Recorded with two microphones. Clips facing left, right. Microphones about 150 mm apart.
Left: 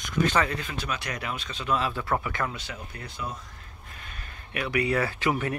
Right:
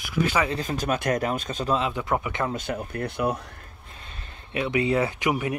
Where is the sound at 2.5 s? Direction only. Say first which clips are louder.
Right 10 dB; 50° right (ahead or behind).